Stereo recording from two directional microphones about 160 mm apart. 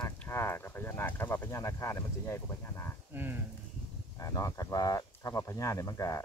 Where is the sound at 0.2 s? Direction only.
15° left (ahead or behind).